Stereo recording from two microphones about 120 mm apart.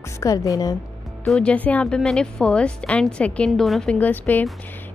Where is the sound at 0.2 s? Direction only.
30° left (ahead or behind).